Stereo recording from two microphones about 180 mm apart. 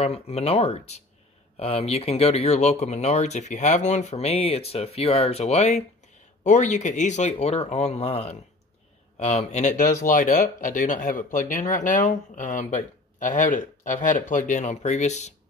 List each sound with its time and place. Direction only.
0.0 s speech: 35° left (ahead or behind)